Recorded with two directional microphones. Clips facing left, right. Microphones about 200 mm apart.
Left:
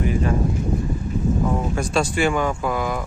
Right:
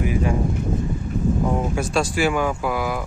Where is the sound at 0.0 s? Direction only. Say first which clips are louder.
Even; 10° right (ahead or behind).